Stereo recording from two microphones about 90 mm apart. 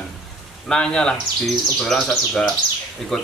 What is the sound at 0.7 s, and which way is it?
Speech, 10° left (ahead or behind).